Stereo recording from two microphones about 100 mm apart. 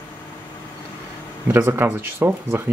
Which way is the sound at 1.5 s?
20° right (ahead or behind).